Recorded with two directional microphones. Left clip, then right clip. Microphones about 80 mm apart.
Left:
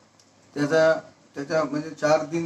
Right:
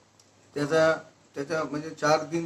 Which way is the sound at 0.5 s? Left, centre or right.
Left.